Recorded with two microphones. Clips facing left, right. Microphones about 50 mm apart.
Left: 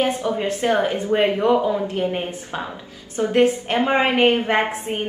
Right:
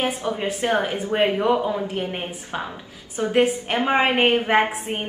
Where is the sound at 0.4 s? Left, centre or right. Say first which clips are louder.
Left 2 dB; centre.